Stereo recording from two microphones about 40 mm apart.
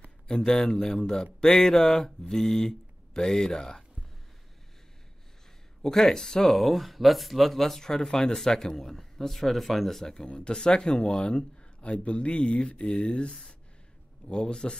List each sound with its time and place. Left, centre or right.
0.3 s speech: centre
5.8 s speech: centre
10.1 s speech: left
13.3 s speech: centre
14.2 s speech: left